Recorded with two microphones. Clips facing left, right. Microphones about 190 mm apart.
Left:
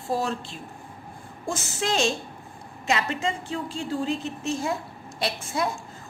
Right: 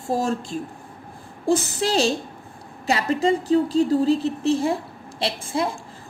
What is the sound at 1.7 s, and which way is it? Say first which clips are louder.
A woman's voice: right 4 dB; 35° right (ahead or behind).